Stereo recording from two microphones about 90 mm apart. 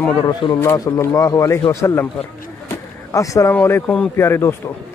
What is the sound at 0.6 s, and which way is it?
Speech, 40° left (ahead or behind).